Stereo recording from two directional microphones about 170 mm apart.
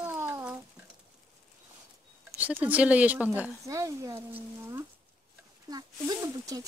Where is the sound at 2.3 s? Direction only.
10° right (ahead or behind).